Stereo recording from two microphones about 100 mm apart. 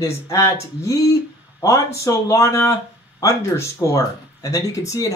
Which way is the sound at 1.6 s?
30° left (ahead or behind).